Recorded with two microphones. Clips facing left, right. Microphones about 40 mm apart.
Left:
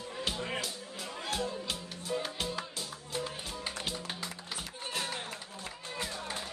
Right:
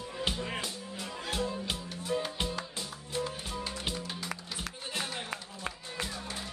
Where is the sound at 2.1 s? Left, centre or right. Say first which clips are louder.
Right 2 dB; centre.